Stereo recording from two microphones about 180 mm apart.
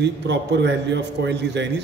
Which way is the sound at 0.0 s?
70° right (ahead or behind).